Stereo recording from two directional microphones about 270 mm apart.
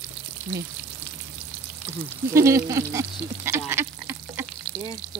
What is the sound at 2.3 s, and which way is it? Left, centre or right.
Speech, centre.